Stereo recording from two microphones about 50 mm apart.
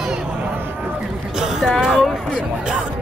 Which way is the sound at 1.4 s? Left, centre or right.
Centre.